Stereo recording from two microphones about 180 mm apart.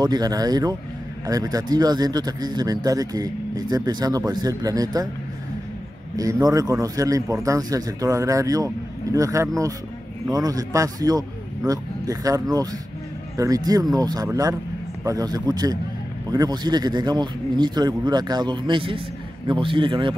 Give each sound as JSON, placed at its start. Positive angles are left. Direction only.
{"t": 0.0, "sound": "speech", "side_deg": -20}
{"t": 6.1, "sound": "speech", "side_deg": -20}